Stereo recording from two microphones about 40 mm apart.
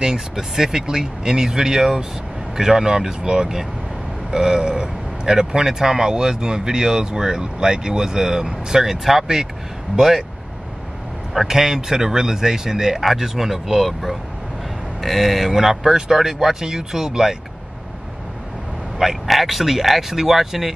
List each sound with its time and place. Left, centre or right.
0.0 s speech: centre
11.4 s speech: centre
18.9 s speech: centre